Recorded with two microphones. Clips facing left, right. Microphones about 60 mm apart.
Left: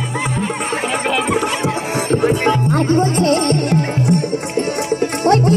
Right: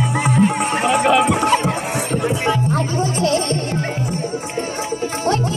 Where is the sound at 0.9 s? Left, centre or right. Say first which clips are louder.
Right 7 dB; centre.